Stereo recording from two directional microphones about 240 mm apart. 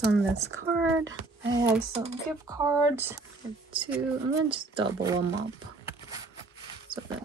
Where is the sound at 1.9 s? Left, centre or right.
Right.